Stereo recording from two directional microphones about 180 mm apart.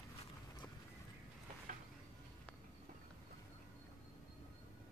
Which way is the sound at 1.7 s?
45° right (ahead or behind).